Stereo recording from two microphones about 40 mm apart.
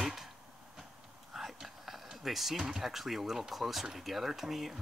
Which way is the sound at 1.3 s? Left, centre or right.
Centre.